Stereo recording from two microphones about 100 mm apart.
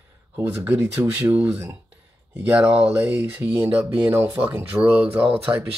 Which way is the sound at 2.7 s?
15° right (ahead or behind).